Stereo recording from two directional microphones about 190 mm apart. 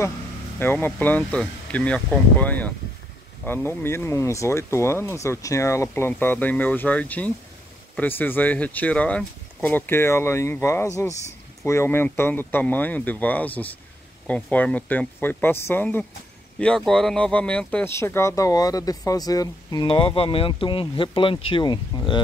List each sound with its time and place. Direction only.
0.6 s speech: 10° left (ahead or behind)